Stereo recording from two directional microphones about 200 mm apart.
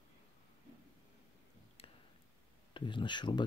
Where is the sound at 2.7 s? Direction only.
25° left (ahead or behind).